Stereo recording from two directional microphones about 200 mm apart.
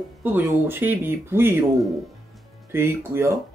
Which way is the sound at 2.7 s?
10° right (ahead or behind).